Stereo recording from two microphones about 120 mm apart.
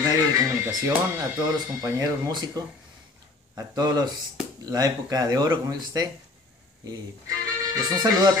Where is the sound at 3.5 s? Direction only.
35° right (ahead or behind).